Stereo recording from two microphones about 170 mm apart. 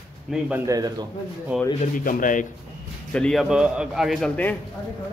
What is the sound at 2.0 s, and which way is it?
Speech, 55° left (ahead or behind).